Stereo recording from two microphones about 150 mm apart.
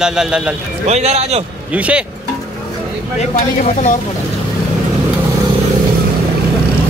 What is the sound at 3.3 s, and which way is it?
Speech, 50° left (ahead or behind).